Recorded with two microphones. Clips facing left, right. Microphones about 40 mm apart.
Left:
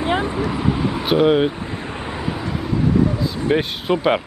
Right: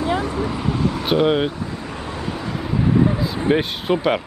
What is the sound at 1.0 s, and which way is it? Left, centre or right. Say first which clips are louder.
Speech: left 3 dB; centre.